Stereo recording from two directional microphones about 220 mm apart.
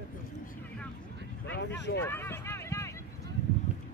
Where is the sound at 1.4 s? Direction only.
55° left (ahead or behind).